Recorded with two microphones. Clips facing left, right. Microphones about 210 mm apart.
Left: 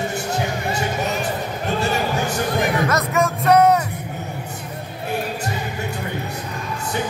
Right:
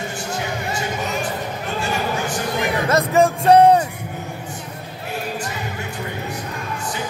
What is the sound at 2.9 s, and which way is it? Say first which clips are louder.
Music: right 4 dB; 30° right (ahead or behind).